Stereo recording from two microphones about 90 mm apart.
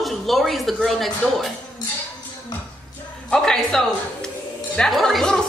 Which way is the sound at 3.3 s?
5° left (ahead or behind).